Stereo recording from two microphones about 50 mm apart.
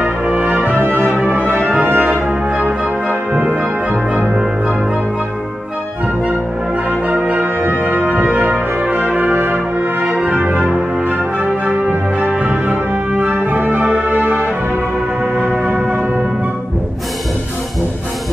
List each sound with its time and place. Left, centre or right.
0.3 s music: right
1.3 s brass instrument: right
2.6 s music: right
7.1 s music: right
9.4 s brass instrument: right
10.0 s music: right
15.3 s music: centre